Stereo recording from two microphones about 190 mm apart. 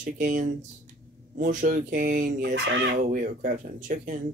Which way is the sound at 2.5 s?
70° right (ahead or behind).